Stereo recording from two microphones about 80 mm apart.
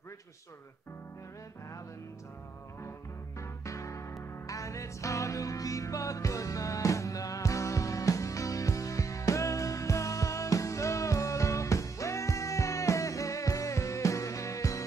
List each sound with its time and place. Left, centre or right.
3.3 s music: left